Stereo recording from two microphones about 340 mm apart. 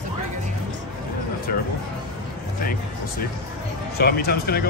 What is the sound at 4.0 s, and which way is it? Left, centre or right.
Speech, left.